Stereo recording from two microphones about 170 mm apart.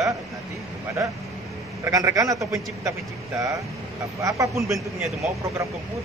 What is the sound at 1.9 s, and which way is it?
A man's voice, 20° right (ahead or behind).